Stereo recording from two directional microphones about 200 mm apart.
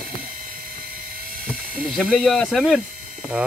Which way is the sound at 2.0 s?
Centre (ahead or behind).